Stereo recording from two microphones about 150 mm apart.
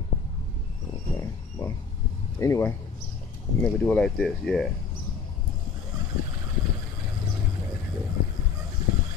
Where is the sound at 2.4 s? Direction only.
20° left (ahead or behind).